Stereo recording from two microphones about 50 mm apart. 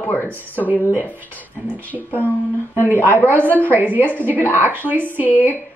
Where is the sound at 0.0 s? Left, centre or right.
Left.